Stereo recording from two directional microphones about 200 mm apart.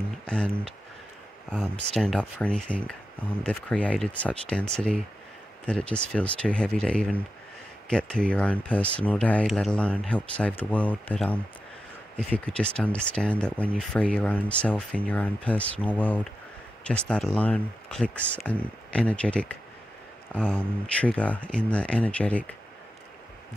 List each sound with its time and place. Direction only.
2.0 s speech: centre (ahead or behind)